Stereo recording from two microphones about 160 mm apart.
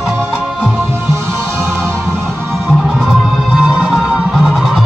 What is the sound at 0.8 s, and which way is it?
Music, 15° right (ahead or behind).